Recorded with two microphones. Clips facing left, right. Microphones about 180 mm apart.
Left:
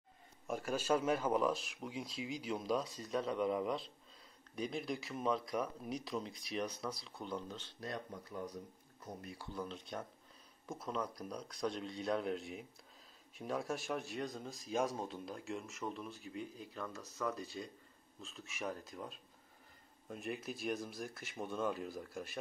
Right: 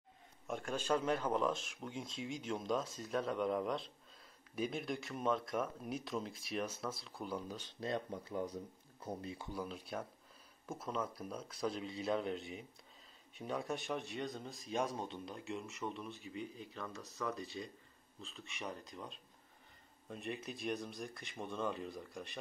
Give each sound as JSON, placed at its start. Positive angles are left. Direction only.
{"t": 0.5, "sound": "speech", "side_deg": 5}
{"t": 7.8, "sound": "speech", "side_deg": -25}
{"t": 9.5, "sound": "speech", "side_deg": -10}